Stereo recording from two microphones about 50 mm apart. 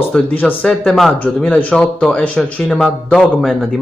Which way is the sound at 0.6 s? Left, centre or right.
Centre.